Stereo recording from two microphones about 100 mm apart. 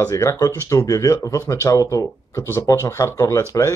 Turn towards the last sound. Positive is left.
turn(degrees=30)  # may be behind; listen again after turning